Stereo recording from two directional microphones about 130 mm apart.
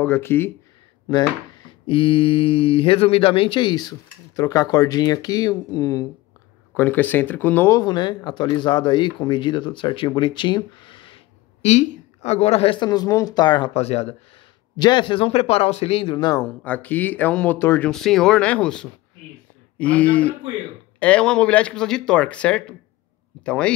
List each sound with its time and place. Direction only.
0.0 s speech: 15° left (ahead or behind)
1.1 s speech: 40° left (ahead or behind); by 7.8 s 15° left (ahead or behind)
7.8 s speech: 35° left (ahead or behind)
11.6 s speech: 60° left (ahead or behind); by 13.7 s 35° left (ahead or behind)
13.7 s speech: 55° left (ahead or behind)
14.8 s speech: 35° left (ahead or behind)
16.4 s speech: 10° left (ahead or behind)
17.9 s a man's voice: 5° left (ahead or behind)